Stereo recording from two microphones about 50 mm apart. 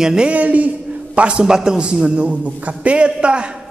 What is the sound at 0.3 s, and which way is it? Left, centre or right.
A man's voice, right.